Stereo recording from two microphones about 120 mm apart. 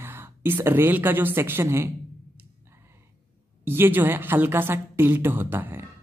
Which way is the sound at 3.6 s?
20° right (ahead or behind).